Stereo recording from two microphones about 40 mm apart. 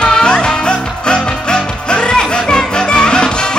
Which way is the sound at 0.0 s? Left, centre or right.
Left.